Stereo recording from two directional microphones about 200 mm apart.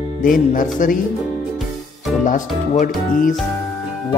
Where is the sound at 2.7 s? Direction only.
40° left (ahead or behind).